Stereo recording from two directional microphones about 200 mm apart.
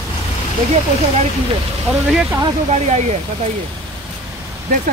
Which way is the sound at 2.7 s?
35° right (ahead or behind).